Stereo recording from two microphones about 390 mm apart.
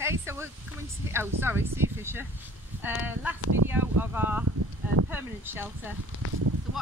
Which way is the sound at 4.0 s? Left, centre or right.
Centre.